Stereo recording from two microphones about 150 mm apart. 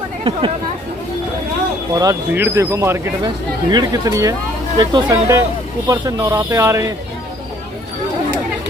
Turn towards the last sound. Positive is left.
turn(degrees=-20)  # may be behind; listen again after turning